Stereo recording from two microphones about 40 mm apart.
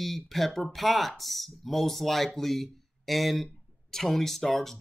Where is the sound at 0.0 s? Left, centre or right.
Centre.